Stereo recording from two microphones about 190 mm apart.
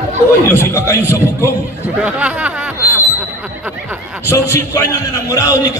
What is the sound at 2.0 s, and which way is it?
Speech, 5° right (ahead or behind).